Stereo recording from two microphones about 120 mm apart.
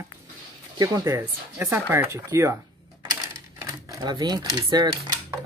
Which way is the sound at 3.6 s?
25° right (ahead or behind).